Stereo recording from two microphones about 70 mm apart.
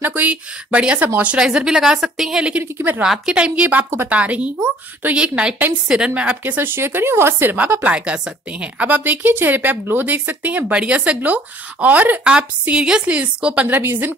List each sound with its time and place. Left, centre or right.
0.0 s a woman's voice: right; by 2.4 s centre
2.6 s a woman's voice: right
3.0 s a woman's voice: centre
6.4 s speech: right
7.5 s a woman's voice: right
13.7 s a woman's voice: right